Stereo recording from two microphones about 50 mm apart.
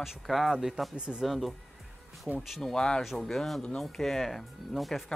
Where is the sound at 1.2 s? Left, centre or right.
Centre.